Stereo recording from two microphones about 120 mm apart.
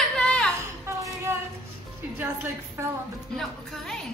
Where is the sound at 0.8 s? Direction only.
25° right (ahead or behind).